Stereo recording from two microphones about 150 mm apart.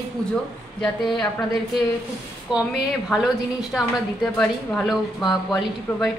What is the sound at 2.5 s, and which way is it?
A woman's voice, 5° right (ahead or behind).